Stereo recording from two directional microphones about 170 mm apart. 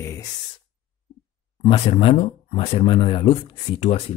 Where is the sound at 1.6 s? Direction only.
30° left (ahead or behind).